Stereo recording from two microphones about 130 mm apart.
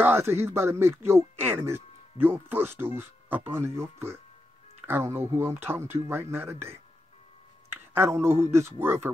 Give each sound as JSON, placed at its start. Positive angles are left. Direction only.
{"t": 0.0, "sound": "speech", "side_deg": -20}
{"t": 7.7, "sound": "speech", "side_deg": -20}